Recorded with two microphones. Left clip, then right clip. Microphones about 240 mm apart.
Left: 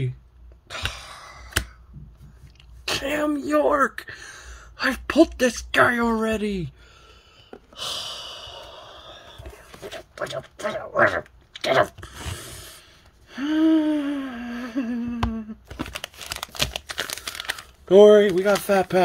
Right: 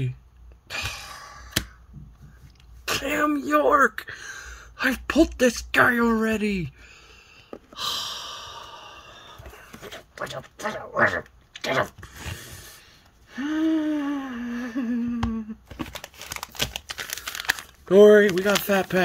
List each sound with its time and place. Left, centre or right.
2.8 s speech: centre
7.5 s gasp: centre
9.8 s a sound: centre
13.3 s gasp: centre
16.0 s crumpling: left
17.4 s a sound: centre
18.4 s speech: centre